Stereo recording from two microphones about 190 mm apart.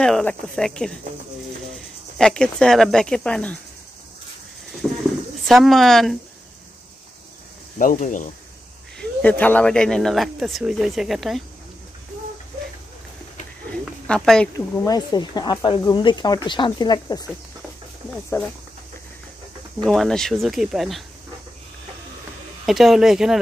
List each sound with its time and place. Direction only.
0.0 s speech: 5° left (ahead or behind)
2.1 s speech: 5° left (ahead or behind)
4.8 s a sound: centre (ahead or behind)
5.5 s speech: centre (ahead or behind)
7.8 s speech: 45° left (ahead or behind)
8.9 s speech: 10° left (ahead or behind)
14.0 s speech: 5° left (ahead or behind)
14.9 s speech: 20° left (ahead or behind)
18.3 s speech: 15° left (ahead or behind)
19.8 s speech: centre (ahead or behind)
22.7 s speech: centre (ahead or behind)